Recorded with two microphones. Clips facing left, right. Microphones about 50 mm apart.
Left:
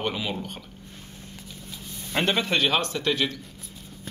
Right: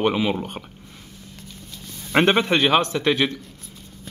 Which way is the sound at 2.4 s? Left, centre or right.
Right.